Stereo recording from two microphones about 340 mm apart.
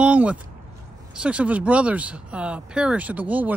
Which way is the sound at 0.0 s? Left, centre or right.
Centre.